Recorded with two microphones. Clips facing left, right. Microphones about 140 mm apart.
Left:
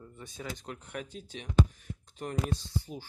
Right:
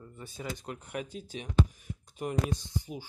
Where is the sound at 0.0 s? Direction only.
Centre (ahead or behind).